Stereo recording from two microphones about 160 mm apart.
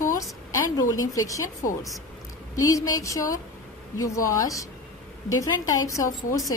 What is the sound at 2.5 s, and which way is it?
A woman's voice, 20° left (ahead or behind).